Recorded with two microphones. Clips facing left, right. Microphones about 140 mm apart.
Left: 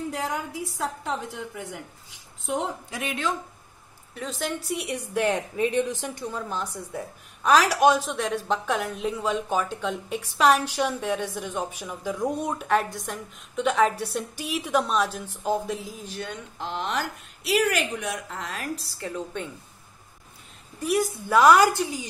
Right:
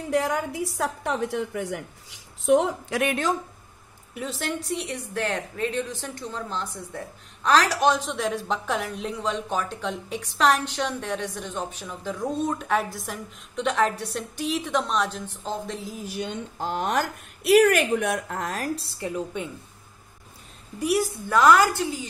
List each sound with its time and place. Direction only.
0.1 s a woman's voice: 75° right (ahead or behind)
4.1 s a woman's voice: centre (ahead or behind)
4.7 s a woman's voice: 15° left (ahead or behind)
12.6 s a woman's voice: centre (ahead or behind)
16.0 s a woman's voice: 10° right (ahead or behind)
16.5 s speech: 45° right (ahead or behind)
18.9 s a woman's voice: 15° right (ahead or behind)
20.8 s a woman's voice: 10° right (ahead or behind)
21.3 s a woman's voice: 15° left (ahead or behind)